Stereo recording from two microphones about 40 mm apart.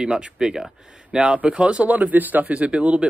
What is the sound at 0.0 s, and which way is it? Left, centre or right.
Speech, centre.